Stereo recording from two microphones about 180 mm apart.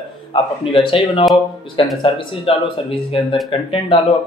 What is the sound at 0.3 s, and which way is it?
Speech, 30° left (ahead or behind).